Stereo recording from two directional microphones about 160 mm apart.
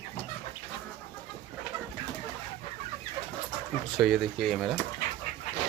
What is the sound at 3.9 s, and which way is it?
Speech, centre (ahead or behind).